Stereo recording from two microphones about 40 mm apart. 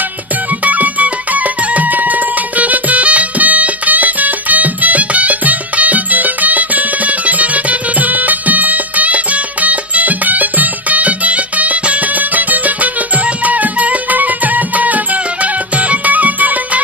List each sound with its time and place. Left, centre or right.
0.7 s music: right